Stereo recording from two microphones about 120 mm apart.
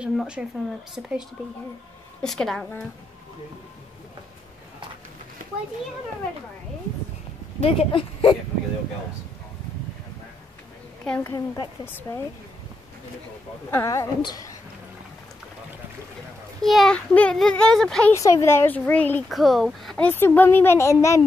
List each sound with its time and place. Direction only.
0.0 s speech: 10° right (ahead or behind)
2.2 s speech: 5° left (ahead or behind)
7.6 s speech: 55° left (ahead or behind)
11.1 s speech: 15° left (ahead or behind)
11.3 s a woman's voice: 35° left (ahead or behind)
11.8 s speech: 20° left (ahead or behind)
13.7 s a woman's voice: 25° left (ahead or behind)
16.6 s speech: centre (ahead or behind)
16.9 s speech: 10° left (ahead or behind)
18.1 s speech: 25° left (ahead or behind)
19.2 s speech: centre (ahead or behind)
20.1 s speech: 15° left (ahead or behind)